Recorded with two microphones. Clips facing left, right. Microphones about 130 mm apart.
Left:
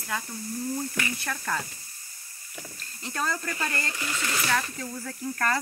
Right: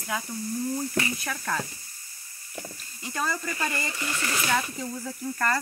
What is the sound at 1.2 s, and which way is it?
Speech, 5° right (ahead or behind).